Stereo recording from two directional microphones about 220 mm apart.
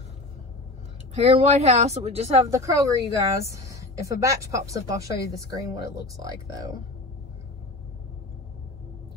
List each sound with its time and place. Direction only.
1.1 s speech: 30° right (ahead or behind)
2.5 s a woman's voice: 15° right (ahead or behind)